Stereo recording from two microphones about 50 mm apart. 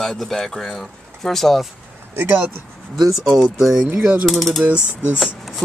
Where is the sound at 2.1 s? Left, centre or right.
Right.